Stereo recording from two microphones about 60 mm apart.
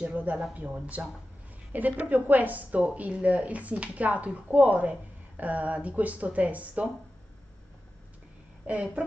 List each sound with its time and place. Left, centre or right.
0.0 s a woman's voice: right
8.6 s a woman's voice: right